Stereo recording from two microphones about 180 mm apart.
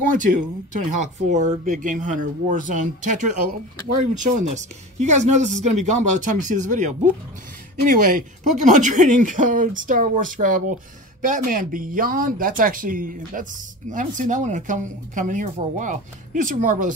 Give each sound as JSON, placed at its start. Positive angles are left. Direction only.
{"t": 0.1, "sound": "speech", "side_deg": -45}